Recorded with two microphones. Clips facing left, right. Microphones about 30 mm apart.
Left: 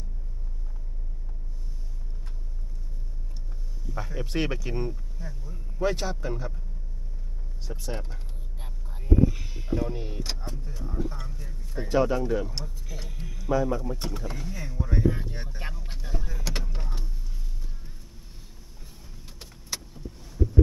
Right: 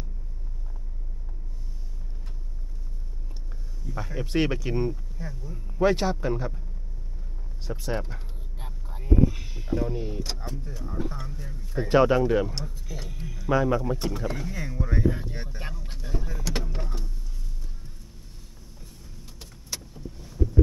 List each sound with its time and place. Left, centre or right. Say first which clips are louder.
3.9 s speech: right 3 dB; centre
5.8 s a man's voice: right 5 dB; right
7.6 s speech: right 5 dB; centre
11.9 s speech: right 4 dB; right
12.8 s speech: right 3 dB; centre
13.5 s speech: right 2 dB; right
13.9 s speech: right 5 dB; centre
19.2 s vehicle: even; centre